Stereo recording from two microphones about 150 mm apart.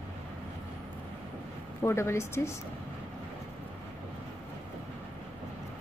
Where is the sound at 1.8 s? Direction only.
15° left (ahead or behind).